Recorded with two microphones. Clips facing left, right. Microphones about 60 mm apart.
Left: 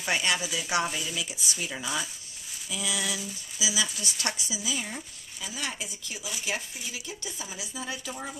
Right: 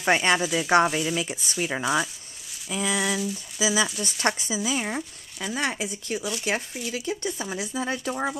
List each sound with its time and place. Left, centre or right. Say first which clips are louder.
0.0 s speech: right 7 dB; right